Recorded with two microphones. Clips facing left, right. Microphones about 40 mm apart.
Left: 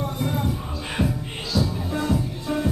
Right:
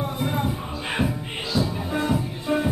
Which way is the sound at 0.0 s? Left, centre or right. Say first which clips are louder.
Even; centre.